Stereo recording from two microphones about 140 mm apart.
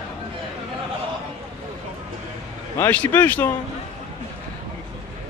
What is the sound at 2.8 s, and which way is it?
Speech, 15° left (ahead or behind).